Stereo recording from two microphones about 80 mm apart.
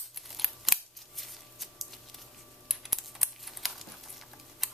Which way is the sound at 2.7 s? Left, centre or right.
Centre.